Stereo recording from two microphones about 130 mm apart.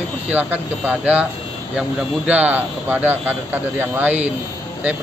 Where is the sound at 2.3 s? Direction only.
10° right (ahead or behind).